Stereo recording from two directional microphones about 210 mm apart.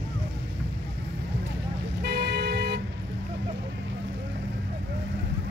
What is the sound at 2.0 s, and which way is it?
Vehicle, 50° right (ahead or behind).